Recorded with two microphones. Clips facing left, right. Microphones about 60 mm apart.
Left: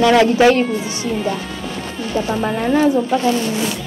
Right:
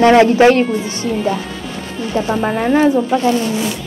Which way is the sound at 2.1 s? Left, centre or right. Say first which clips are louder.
Right 2 dB; centre.